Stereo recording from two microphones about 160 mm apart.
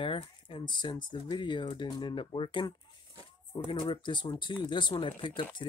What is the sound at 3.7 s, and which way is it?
Speech, 30° left (ahead or behind).